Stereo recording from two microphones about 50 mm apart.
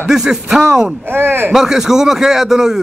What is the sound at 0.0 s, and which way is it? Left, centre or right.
Speech, centre.